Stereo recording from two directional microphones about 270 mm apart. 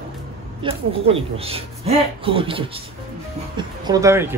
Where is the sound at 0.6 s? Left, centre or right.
Right.